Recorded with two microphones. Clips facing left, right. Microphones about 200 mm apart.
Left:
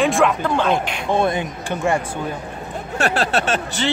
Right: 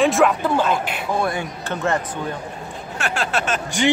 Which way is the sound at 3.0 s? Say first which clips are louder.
Left 4 dB; 35° left (ahead or behind).